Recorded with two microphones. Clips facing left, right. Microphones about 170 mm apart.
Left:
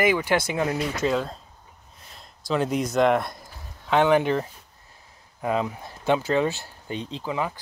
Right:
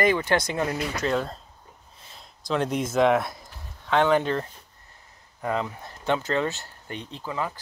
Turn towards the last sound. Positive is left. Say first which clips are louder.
# left 3 dB
turn(degrees=15)  # may be behind; listen again after turning